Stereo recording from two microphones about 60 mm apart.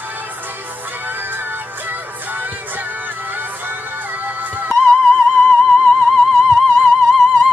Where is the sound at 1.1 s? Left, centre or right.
Right.